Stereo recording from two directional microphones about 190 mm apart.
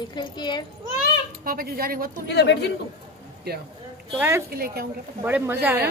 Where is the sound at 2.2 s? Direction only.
65° left (ahead or behind).